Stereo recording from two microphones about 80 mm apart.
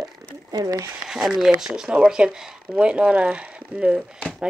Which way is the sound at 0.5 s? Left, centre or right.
Right.